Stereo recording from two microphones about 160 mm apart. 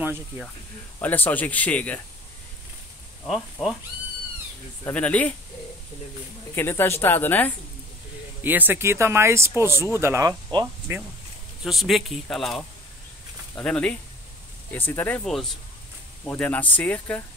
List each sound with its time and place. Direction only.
1.0 s a woman's voice: 10° left (ahead or behind)
3.6 s speech: centre (ahead or behind)
4.8 s a woman's voice: 10° left (ahead or behind)
6.5 s a woman's voice: 15° left (ahead or behind)
8.5 s speech: 10° right (ahead or behind)
11.6 s a woman's voice: centre (ahead or behind)